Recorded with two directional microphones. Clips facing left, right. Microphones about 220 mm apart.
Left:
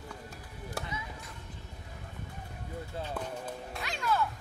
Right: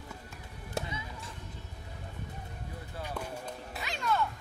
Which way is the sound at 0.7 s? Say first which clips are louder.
Right 3 dB; 25° right (ahead or behind).